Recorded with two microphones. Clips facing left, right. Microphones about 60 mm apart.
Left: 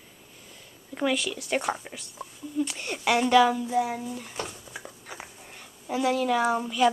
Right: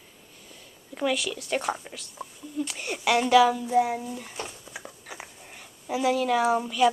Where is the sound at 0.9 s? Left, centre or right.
Centre.